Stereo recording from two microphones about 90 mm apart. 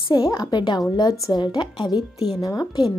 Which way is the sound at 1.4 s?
55° left (ahead or behind).